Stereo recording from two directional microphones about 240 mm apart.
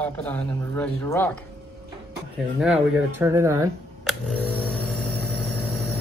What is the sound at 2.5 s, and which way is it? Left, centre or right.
Speech, centre.